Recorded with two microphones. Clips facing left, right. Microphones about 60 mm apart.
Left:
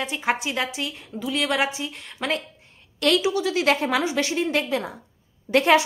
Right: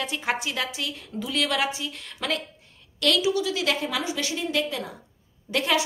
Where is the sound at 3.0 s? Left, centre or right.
Left.